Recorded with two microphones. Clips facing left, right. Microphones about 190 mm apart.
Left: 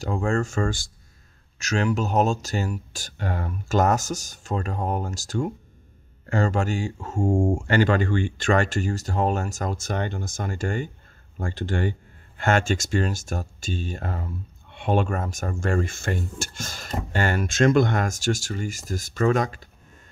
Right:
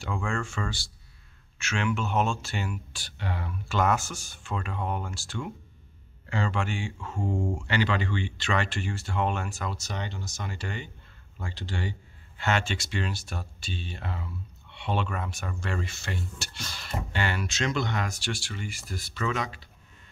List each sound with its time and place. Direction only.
0.0 s speech: 40° left (ahead or behind)